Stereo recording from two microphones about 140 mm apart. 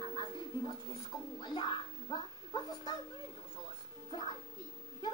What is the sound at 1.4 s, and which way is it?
A child's voice, 35° left (ahead or behind).